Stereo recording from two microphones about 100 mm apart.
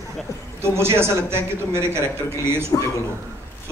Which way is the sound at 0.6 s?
25° right (ahead or behind).